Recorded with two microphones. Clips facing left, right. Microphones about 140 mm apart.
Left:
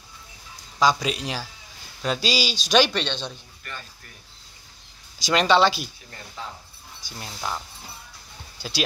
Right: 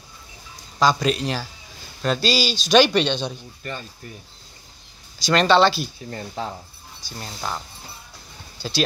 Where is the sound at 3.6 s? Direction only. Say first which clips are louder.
Right 7 dB; 25° right (ahead or behind).